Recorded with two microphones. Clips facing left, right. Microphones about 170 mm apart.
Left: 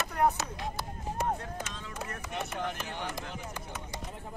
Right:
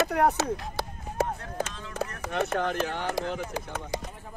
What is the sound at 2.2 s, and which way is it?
Speech, 90° right.